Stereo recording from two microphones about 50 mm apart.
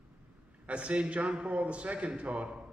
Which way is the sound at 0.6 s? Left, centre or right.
Right.